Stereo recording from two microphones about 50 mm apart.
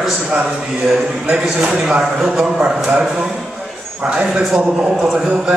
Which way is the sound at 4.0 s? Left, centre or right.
Centre.